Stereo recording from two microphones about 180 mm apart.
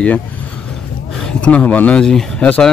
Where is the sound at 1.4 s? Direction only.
10° left (ahead or behind).